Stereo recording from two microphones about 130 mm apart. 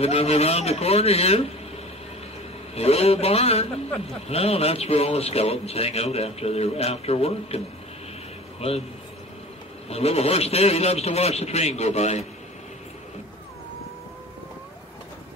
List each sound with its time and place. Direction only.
0.0 s a man's voice: 50° left (ahead or behind)
2.7 s a man's voice: 50° left (ahead or behind)
9.8 s a man's voice: 50° left (ahead or behind)